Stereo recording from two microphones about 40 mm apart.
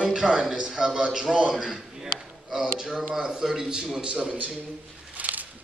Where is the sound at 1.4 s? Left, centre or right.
Centre.